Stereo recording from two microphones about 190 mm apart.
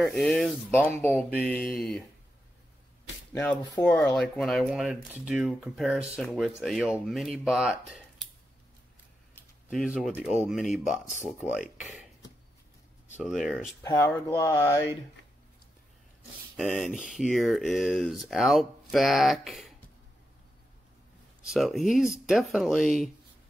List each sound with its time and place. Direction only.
0.0 s speech: centre (ahead or behind)
3.3 s speech: 10° left (ahead or behind)
9.3 s speech: centre (ahead or behind)
11.8 s speech: 5° right (ahead or behind)
13.1 s speech: centre (ahead or behind)
13.8 s speech: 15° left (ahead or behind)
16.5 s speech: centre (ahead or behind)
21.4 s speech: centre (ahead or behind)